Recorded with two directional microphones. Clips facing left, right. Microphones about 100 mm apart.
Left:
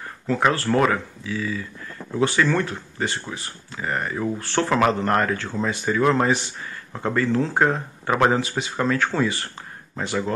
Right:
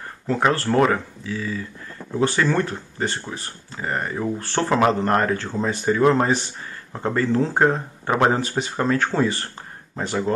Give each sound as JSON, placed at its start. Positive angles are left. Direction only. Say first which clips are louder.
{"t": 0.3, "sound": "speech", "louder": "even", "side_deg": -35}
{"t": 6.9, "sound": "speech", "louder": "right 1 dB", "side_deg": -20}
{"t": 8.4, "sound": "speech", "louder": "right 1 dB", "side_deg": -45}